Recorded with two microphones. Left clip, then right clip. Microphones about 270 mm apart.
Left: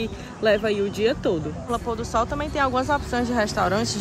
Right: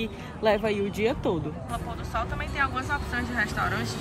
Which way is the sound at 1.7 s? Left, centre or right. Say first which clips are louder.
Left 10 dB; centre.